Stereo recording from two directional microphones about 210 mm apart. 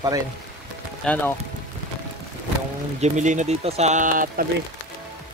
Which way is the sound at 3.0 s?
35° right (ahead or behind).